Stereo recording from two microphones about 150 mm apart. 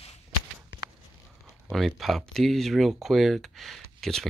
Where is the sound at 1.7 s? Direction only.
Centre (ahead or behind).